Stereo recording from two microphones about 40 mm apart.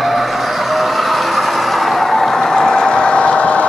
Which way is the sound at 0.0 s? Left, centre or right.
Centre.